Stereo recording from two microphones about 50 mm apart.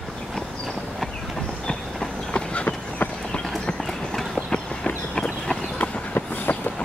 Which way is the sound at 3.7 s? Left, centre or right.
Centre.